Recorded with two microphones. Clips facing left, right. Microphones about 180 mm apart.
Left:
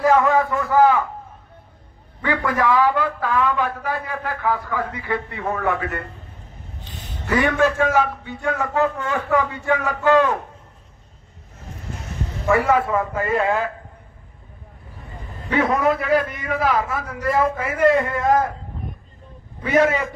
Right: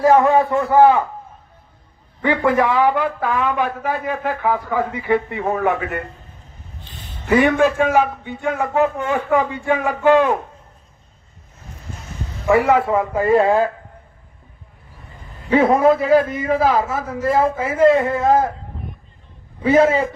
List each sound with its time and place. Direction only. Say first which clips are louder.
0.0 s a man's voice: right 3 dB; 35° right (ahead or behind)
2.2 s a man's voice: right 4 dB; 25° right (ahead or behind)
7.2 s a man's voice: right 4 dB; 15° right (ahead or behind)
12.4 s a man's voice: right 3 dB; 20° right (ahead or behind)
13.2 s speech: right 8 dB; 35° right (ahead or behind)
15.5 s a man's voice: right 6 dB; 30° right (ahead or behind)
19.6 s a man's voice: right 4 dB; 30° right (ahead or behind)